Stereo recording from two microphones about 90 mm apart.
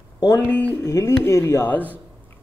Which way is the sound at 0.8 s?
35° left (ahead or behind).